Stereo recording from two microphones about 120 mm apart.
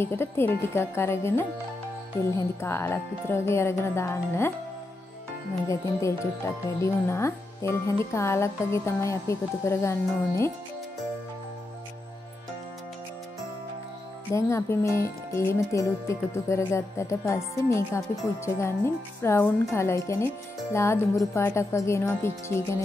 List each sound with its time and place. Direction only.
0.0 s speech: 20° left (ahead or behind)
5.7 s speech: 25° left (ahead or behind)
14.3 s speech: 25° left (ahead or behind)